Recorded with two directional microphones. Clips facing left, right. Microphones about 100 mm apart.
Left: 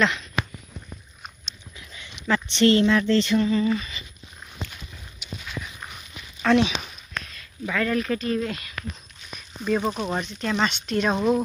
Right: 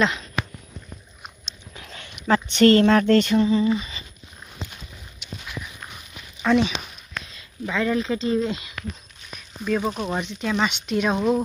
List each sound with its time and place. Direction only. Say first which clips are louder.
1.8 s a sound: right 4 dB; 60° right (ahead or behind)
2.2 s speech: right 3 dB; 40° right (ahead or behind)
3.3 s speech: right 2 dB; 25° right (ahead or behind)
6.4 s a sound: even; 5° right (ahead or behind)
7.7 s speech: right 1 dB; 20° right (ahead or behind)
9.6 s speech: even; centre (ahead or behind)